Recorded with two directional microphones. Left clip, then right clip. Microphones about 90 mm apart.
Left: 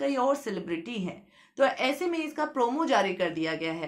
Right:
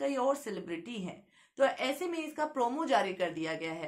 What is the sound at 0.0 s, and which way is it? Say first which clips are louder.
A woman's voice: left 4 dB; 20° left (ahead or behind).